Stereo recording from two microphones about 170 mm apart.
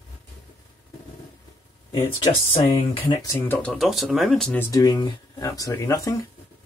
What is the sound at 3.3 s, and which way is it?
Speech, 10° left (ahead or behind).